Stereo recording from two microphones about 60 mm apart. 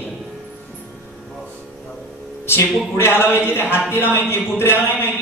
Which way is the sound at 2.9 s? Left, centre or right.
Left.